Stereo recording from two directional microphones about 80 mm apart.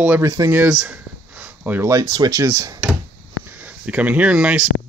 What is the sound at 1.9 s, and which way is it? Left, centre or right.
Speech, right.